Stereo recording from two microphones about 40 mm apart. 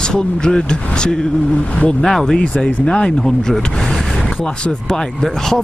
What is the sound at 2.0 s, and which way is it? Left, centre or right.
Speech, centre.